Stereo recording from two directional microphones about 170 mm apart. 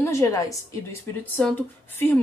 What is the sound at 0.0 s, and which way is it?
A woman's voice, 15° left (ahead or behind).